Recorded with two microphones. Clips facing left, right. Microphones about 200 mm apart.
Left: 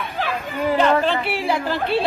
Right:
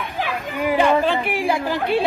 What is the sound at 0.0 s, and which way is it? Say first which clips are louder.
Speech: even; 15° right (ahead or behind).